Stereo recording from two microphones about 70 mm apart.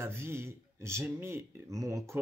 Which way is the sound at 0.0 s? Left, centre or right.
Right.